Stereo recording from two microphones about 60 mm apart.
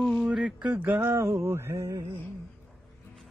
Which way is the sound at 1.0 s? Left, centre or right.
Right.